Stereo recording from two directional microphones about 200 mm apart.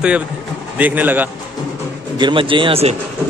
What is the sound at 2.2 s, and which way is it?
Speech, 25° right (ahead or behind).